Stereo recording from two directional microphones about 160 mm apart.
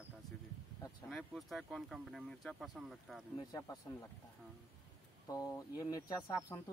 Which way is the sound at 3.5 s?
20° left (ahead or behind).